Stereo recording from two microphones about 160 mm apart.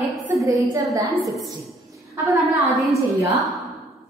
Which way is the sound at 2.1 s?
20° right (ahead or behind).